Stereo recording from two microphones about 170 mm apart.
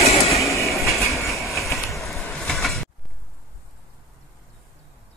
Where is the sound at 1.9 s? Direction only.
Centre (ahead or behind).